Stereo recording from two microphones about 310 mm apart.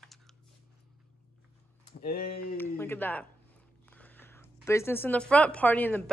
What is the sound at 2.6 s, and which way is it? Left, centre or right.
A woman's voice, centre.